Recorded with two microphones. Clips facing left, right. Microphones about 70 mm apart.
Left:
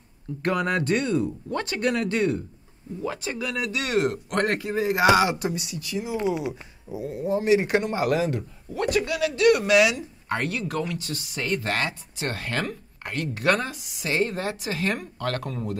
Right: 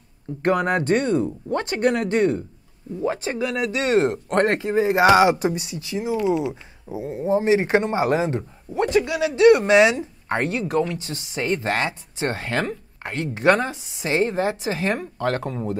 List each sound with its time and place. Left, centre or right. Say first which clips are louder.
0.4 s speech: right 4 dB; right
6.1 s speech: right 4 dB; left
6.5 s speech: right 3 dB; right